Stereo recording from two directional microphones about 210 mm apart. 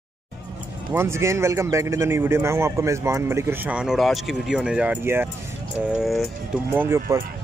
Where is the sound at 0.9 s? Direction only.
10° right (ahead or behind).